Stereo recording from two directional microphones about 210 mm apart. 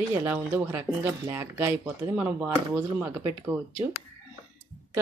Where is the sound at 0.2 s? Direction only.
10° right (ahead or behind).